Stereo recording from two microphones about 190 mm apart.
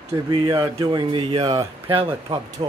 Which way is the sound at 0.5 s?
20° right (ahead or behind).